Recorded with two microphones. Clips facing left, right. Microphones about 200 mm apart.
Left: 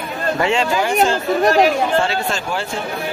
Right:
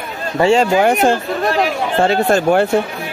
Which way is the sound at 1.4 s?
45° left (ahead or behind).